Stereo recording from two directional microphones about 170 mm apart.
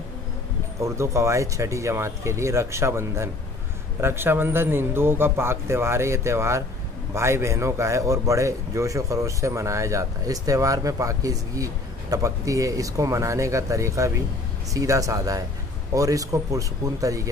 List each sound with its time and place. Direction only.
0.7 s a man's voice: 15° right (ahead or behind)